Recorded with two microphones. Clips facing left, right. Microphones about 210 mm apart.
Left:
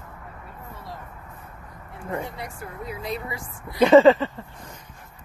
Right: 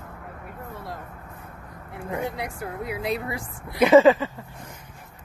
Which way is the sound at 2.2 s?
70° right (ahead or behind).